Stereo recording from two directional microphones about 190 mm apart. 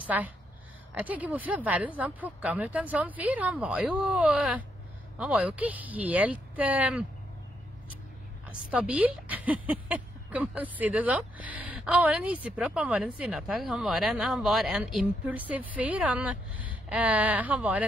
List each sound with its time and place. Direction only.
0.0 s speech: 10° right (ahead or behind)
8.5 s speech: 5° right (ahead or behind)